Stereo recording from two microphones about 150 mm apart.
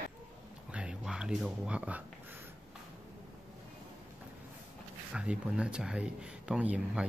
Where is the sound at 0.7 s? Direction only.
5° right (ahead or behind).